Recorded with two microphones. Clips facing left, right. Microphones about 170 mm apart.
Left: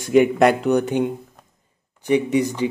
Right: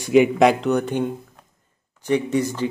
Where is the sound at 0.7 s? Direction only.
15° left (ahead or behind).